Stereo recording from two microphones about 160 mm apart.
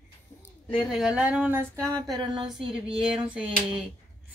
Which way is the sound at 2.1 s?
30° right (ahead or behind).